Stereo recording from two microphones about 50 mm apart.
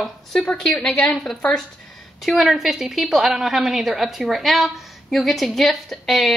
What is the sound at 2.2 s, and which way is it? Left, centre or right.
A woman's voice, centre.